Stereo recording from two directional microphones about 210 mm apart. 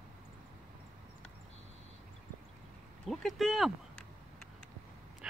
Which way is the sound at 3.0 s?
Centre (ahead or behind).